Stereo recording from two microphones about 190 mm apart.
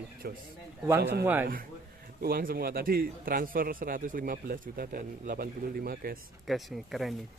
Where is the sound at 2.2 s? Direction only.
50° right (ahead or behind).